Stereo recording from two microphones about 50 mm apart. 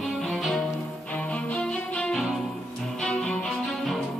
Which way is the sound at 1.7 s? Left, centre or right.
Left.